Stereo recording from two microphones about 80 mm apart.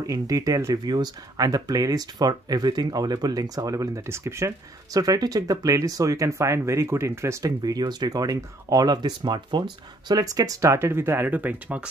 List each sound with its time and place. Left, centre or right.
0.0 s speech: right
0.8 s speech: right
4.9 s speech: right
7.6 s speech: right; by 11.9 s centre